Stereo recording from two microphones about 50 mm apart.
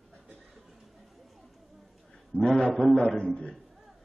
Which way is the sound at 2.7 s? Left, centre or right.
Centre.